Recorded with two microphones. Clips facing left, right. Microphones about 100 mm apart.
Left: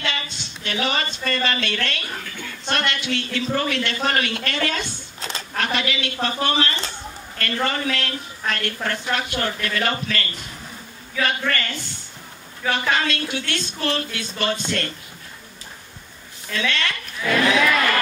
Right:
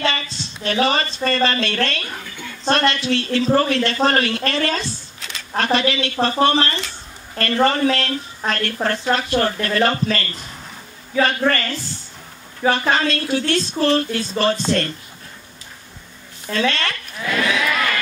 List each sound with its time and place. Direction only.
0.0 s a woman's voice: 35° right (ahead or behind)
16.4 s a woman's voice: 35° right (ahead or behind)